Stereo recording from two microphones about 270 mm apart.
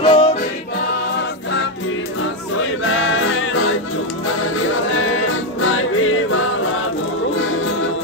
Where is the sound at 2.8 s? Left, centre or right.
Left.